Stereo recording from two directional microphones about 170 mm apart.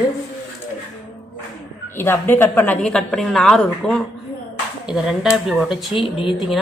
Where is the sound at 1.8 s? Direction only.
15° left (ahead or behind).